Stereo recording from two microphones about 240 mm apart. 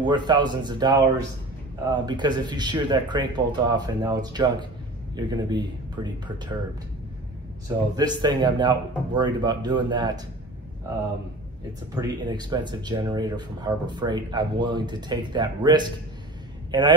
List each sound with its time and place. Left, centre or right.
0.0 s speech: centre
7.6 s speech: centre
11.9 s speech: centre